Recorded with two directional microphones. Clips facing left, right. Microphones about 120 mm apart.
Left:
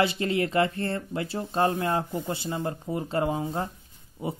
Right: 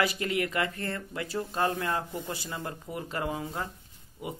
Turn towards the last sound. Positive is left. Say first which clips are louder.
# left 5 dB
turn(degrees=30)  # may be behind; listen again after turning